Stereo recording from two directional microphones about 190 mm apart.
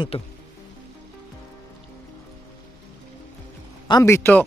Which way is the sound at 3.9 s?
15° left (ahead or behind).